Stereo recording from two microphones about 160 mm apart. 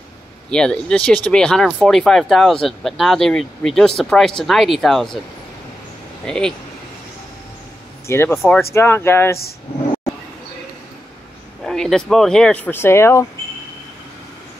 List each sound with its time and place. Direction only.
0.5 s speech: 5° left (ahead or behind)
6.2 s speech: 5° left (ahead or behind)
8.1 s speech: 15° left (ahead or behind)
11.6 s speech: 5° left (ahead or behind)